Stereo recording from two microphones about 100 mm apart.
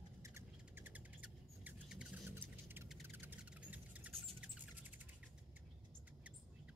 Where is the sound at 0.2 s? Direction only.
25° right (ahead or behind).